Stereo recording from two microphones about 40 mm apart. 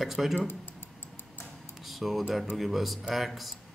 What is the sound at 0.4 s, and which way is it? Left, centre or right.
Speech, left.